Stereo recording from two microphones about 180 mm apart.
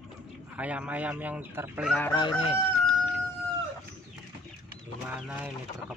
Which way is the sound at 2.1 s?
30° left (ahead or behind).